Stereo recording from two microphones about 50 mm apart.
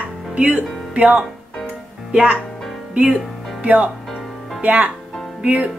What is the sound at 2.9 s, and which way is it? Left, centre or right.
Speech, right.